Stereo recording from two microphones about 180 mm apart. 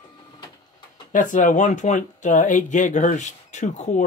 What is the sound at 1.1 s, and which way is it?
Speech, 45° left (ahead or behind).